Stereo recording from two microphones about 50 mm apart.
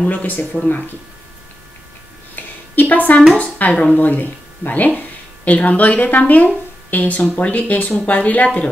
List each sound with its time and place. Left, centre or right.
0.0 s speech: left
2.3 s a sound: left
3.3 s speech: left